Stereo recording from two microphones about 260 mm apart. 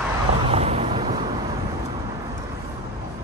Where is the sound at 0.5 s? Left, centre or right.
Right.